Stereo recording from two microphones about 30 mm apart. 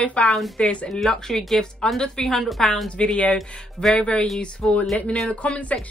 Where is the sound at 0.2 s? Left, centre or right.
Left.